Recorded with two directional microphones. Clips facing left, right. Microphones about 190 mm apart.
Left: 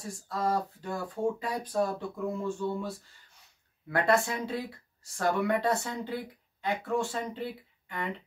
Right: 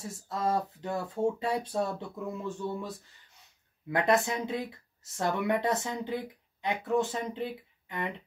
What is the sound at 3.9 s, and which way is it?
Speech, 20° right (ahead or behind).